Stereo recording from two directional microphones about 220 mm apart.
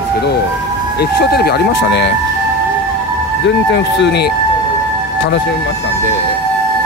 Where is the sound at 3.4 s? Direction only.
50° left (ahead or behind).